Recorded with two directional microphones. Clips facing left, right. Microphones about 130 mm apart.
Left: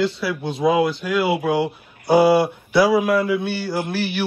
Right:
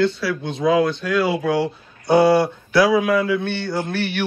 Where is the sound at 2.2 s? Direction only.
5° left (ahead or behind).